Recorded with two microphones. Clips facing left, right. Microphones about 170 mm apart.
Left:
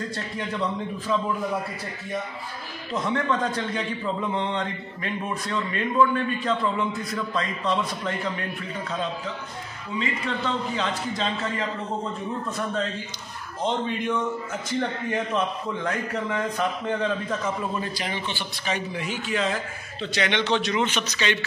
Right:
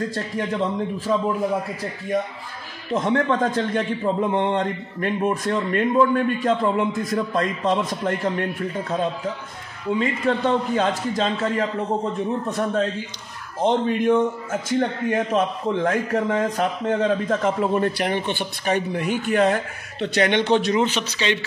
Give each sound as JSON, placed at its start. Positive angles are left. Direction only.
{"t": 1.1, "sound": "a man's voice", "side_deg": -45}
{"t": 2.9, "sound": "a man's voice", "side_deg": -50}
{"t": 13.6, "sound": "a man's voice", "side_deg": -50}